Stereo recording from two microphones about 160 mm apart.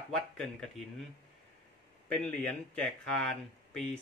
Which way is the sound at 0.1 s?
5° left (ahead or behind).